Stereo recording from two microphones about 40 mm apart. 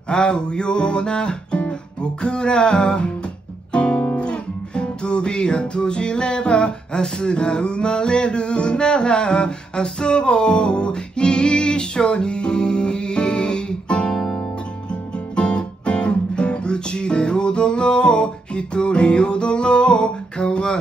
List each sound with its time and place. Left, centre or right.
0.1 s music: left
3.7 s guitar: left
4.2 s music: left
14.1 s guitar: centre
14.9 s guitar: left